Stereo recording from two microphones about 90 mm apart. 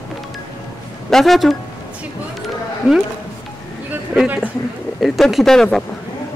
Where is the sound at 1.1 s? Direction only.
Centre (ahead or behind).